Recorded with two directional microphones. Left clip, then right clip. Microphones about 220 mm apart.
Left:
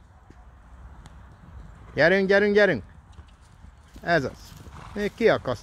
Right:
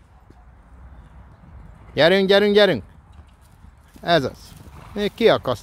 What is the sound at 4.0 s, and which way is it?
Speech, 15° right (ahead or behind).